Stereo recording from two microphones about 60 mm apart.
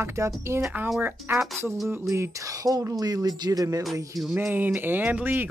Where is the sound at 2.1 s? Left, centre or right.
Right.